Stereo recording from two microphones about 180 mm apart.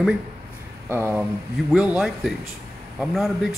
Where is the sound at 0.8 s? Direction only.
10° right (ahead or behind).